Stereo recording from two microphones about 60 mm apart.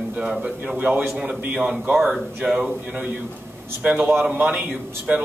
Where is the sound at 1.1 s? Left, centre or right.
Centre.